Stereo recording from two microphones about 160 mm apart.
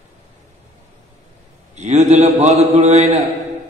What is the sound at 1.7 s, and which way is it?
A man's voice, 45° right (ahead or behind).